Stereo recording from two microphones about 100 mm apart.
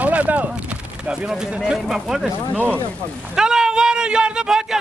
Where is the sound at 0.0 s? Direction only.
15° right (ahead or behind).